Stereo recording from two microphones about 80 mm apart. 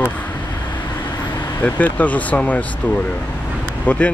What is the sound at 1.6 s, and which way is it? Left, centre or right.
Speech, left.